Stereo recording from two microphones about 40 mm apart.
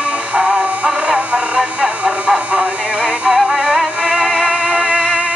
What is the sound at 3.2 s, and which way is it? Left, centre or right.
Music, centre.